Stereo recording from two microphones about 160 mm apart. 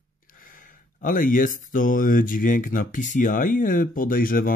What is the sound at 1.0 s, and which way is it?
Speech, 60° left (ahead or behind).